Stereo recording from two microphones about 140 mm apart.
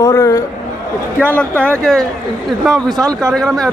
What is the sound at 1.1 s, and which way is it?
Speech, 10° left (ahead or behind).